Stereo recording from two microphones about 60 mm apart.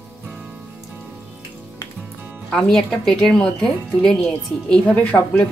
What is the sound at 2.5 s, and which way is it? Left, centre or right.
A woman's voice, centre.